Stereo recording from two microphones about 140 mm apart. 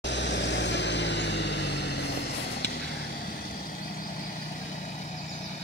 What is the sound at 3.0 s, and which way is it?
Vehicle, 90° left.